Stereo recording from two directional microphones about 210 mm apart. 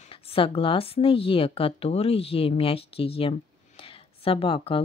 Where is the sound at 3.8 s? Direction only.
25° left (ahead or behind).